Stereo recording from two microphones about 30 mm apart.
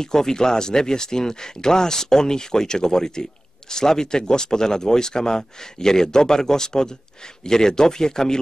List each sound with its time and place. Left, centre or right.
0.0 s speech: centre